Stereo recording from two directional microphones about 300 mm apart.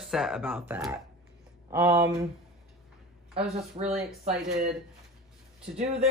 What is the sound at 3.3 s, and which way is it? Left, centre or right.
Speech, centre.